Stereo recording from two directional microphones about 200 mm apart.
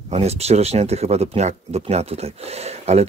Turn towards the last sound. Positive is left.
turn(degrees=-30)  # may be behind; listen again after turning